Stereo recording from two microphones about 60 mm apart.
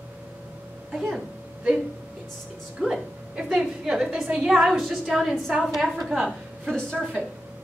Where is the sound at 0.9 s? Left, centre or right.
Centre.